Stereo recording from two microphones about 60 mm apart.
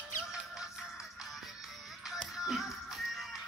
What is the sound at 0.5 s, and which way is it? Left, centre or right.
Music, centre.